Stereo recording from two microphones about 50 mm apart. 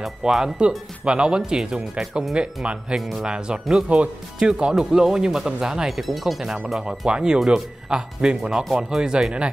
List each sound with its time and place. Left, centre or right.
0.2 s speech: centre
3.0 s speech: centre
3.3 s speech: centre
4.4 s speech: centre
5.9 s speech: centre
7.1 s speech: centre